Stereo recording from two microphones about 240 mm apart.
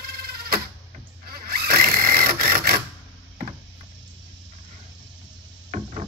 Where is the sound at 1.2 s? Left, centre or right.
Right.